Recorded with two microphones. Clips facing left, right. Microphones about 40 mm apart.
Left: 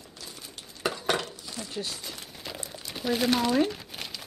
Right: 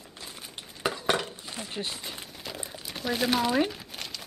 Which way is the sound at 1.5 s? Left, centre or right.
Right.